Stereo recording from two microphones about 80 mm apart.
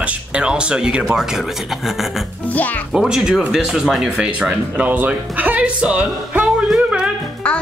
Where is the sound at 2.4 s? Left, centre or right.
Left.